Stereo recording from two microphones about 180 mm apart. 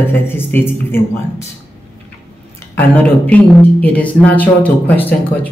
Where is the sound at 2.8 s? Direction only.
10° left (ahead or behind).